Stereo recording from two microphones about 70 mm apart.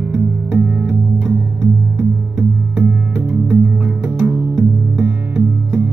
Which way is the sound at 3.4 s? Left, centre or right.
Right.